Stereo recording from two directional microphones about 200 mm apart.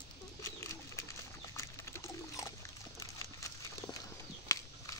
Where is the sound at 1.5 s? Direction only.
15° left (ahead or behind).